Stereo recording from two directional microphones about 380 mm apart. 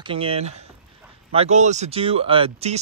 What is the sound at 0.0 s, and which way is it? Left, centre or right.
Speech, centre.